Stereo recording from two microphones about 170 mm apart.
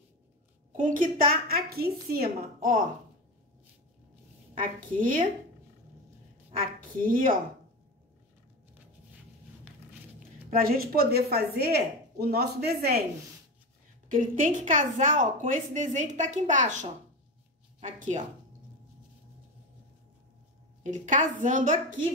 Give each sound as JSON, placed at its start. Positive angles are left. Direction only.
{"t": 0.7, "sound": "a woman's voice", "side_deg": -50}
{"t": 4.6, "sound": "speech", "side_deg": -55}
{"t": 7.1, "sound": "a woman's voice", "side_deg": -55}
{"t": 10.6, "sound": "speech", "side_deg": -60}
{"t": 14.0, "sound": "a woman's voice", "side_deg": -50}
{"t": 20.9, "sound": "speech", "side_deg": -45}